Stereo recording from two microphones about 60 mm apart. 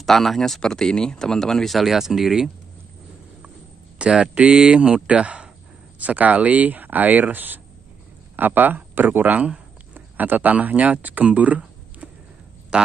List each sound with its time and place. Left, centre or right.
0.0 s speech: centre
4.0 s a man's voice: centre